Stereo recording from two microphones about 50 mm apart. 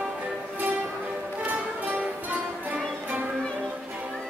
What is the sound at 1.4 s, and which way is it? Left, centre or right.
Music, right.